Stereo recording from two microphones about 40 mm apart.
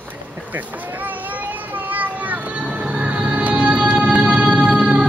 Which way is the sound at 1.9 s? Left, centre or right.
Right.